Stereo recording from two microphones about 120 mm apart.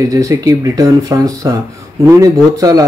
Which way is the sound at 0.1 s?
30° right (ahead or behind).